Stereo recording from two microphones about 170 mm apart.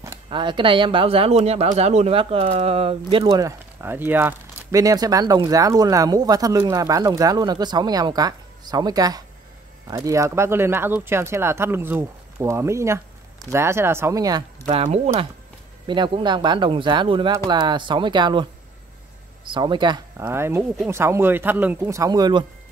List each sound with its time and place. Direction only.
0.3 s speech: 30° right (ahead or behind)
14.7 s speech: 35° right (ahead or behind)
20.2 s speech: 15° right (ahead or behind)